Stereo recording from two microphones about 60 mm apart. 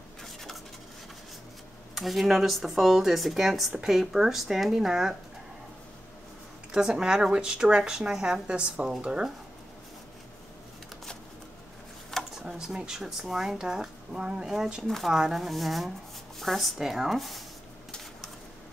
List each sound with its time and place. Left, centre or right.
0.2 s a sound: centre
2.0 s speech: centre
6.7 s speech: centre
12.4 s speech: centre